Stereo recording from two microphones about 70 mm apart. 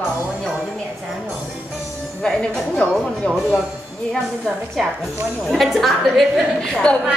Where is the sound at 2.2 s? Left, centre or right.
Centre.